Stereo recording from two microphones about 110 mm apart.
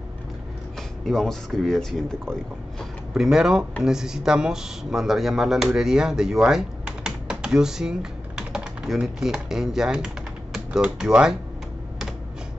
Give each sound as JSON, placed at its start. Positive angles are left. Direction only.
{"t": 1.0, "sound": "speech", "side_deg": 5}